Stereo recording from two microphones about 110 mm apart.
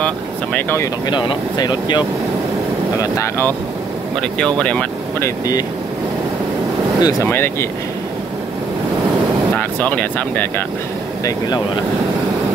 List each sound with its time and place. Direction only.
0.0 s speech: 15° left (ahead or behind)
1.0 s speech: 45° left (ahead or behind)
3.0 s speech: 30° left (ahead or behind)
4.6 s speech: 10° left (ahead or behind)
7.0 s speech: 35° left (ahead or behind)
7.2 s speech: 20° left (ahead or behind)
9.6 s speech: 15° left (ahead or behind)
11.2 s speech: 35° left (ahead or behind)